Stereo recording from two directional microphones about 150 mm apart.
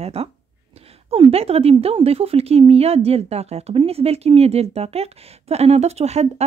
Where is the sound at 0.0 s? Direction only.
40° right (ahead or behind).